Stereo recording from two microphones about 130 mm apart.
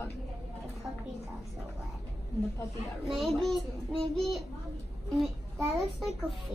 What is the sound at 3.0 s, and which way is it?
A child's voice, centre (ahead or behind).